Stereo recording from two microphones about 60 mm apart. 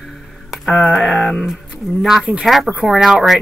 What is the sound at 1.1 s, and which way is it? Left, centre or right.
Music, centre.